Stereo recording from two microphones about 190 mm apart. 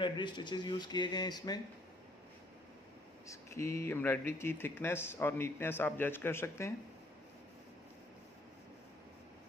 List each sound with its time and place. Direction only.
0.0 s speech: 25° left (ahead or behind)
3.3 s speech: 15° left (ahead or behind)